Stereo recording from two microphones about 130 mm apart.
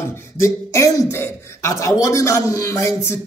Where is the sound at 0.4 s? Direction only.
25° left (ahead or behind).